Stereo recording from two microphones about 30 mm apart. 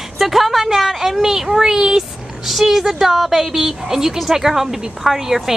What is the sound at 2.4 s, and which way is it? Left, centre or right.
A woman's voice, centre.